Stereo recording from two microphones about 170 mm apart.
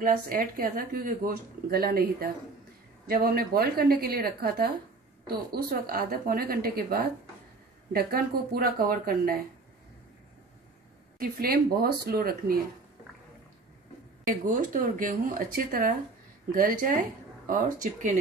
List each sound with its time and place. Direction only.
0.0 s speech: 55° right (ahead or behind)
11.1 s speech: 60° right (ahead or behind)
14.2 s speech: 50° right (ahead or behind)